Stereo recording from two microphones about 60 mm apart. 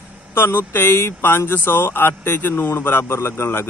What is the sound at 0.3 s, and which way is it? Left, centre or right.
A man's voice, left.